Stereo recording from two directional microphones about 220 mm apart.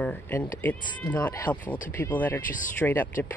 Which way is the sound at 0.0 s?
5° left (ahead or behind).